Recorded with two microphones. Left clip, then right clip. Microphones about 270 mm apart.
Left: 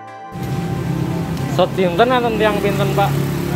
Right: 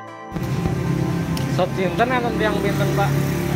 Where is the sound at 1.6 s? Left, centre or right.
Left.